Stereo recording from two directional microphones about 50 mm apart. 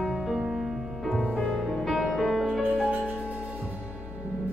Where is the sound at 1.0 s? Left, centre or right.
Centre.